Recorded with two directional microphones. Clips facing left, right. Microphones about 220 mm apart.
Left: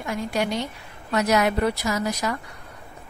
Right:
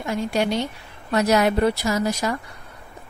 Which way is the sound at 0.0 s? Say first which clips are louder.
Right 3 dB; 25° right (ahead or behind).